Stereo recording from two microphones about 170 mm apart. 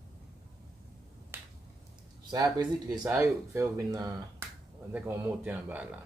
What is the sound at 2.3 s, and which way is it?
Speech, 25° right (ahead or behind).